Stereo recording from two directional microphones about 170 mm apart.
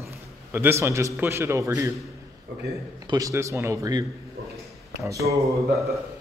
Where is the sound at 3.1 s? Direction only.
20° right (ahead or behind).